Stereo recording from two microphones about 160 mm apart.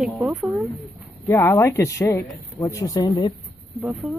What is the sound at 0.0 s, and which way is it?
Speech, centre (ahead or behind).